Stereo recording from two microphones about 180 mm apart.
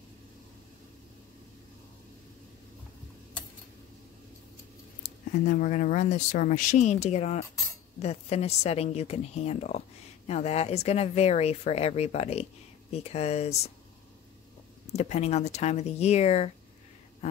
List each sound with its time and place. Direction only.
5.4 s a woman's voice: 45° left (ahead or behind)
14.9 s a woman's voice: 40° left (ahead or behind)